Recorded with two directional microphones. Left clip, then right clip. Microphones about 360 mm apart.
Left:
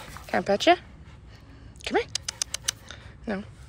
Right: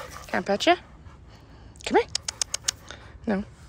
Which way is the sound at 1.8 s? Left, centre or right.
Centre.